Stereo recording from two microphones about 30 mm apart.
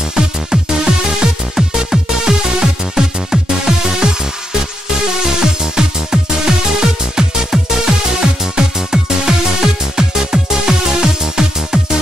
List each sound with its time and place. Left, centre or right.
0.1 s music: right
5.2 s music: right
7.5 s music: centre